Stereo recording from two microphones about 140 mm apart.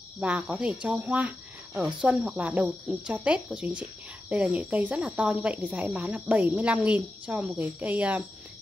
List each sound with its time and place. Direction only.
0.2 s speech: 10° right (ahead or behind)